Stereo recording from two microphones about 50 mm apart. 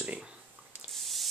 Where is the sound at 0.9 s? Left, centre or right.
Centre.